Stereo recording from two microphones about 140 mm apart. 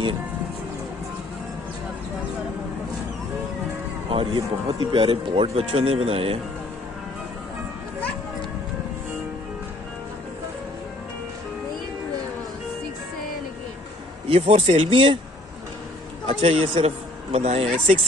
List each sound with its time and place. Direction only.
4.1 s speech: 40° right (ahead or behind)
14.3 s speech: 50° right (ahead or behind)
16.4 s a man's voice: 40° right (ahead or behind)